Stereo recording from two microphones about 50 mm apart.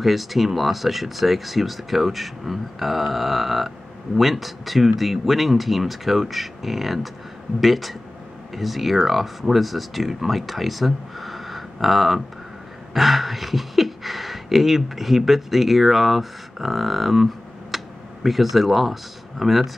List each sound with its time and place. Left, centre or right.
0.0 s speech: centre